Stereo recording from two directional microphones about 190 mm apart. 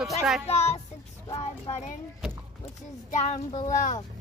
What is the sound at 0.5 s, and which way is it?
Speech, 35° left (ahead or behind).